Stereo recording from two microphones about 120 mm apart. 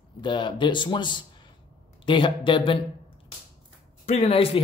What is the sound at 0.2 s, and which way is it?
Speech, 40° left (ahead or behind).